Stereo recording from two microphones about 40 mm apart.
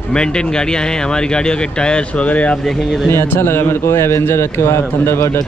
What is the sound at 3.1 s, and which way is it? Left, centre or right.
Speech, left.